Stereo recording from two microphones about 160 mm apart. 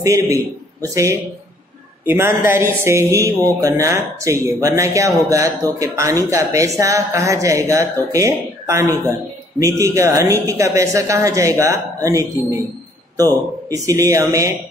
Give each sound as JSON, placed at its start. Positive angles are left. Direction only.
{"t": 0.0, "sound": "a man's voice", "side_deg": -20}